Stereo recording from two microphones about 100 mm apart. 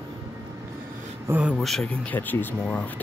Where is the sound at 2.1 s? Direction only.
15° left (ahead or behind).